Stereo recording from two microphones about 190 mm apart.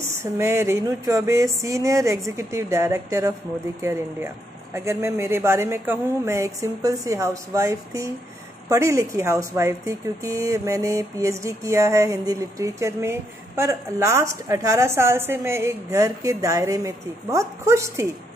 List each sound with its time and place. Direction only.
0.1 s speech: 15° right (ahead or behind)